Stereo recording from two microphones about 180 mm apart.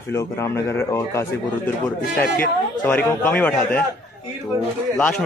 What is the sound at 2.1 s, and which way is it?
Speech, 55° left (ahead or behind).